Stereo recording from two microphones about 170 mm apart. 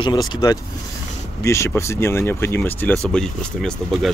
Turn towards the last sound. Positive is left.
turn(degrees=5)  # may be behind; listen again after turning